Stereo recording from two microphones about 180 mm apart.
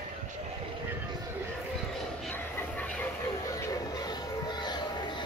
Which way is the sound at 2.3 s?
10° left (ahead or behind).